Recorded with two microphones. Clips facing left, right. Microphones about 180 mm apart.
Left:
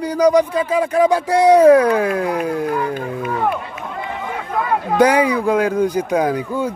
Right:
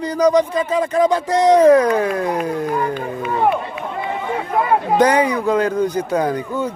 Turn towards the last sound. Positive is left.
turn(degrees=10)  # may be behind; listen again after turning